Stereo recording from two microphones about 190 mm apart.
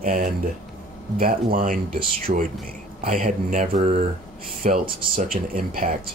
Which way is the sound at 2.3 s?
35° right (ahead or behind).